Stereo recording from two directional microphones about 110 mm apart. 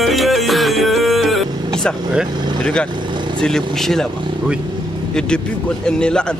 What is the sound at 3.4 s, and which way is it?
Music, 5° left (ahead or behind).